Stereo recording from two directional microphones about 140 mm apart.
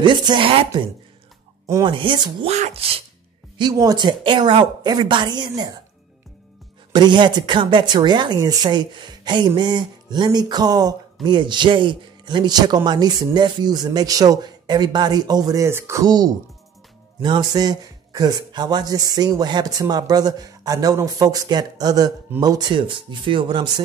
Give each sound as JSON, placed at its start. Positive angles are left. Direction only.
{"t": 0.0, "sound": "speech", "side_deg": -35}
{"t": 1.9, "sound": "speech", "side_deg": -35}
{"t": 2.4, "sound": "speech", "side_deg": -50}
{"t": 3.5, "sound": "speech", "side_deg": -30}
{"t": 6.9, "sound": "speech", "side_deg": -30}